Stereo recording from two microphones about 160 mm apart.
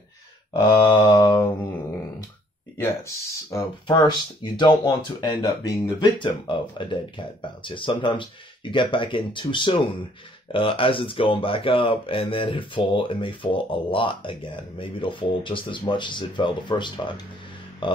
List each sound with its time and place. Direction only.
0.5 s speech: 30° left (ahead or behind)
2.8 s speech: 20° left (ahead or behind)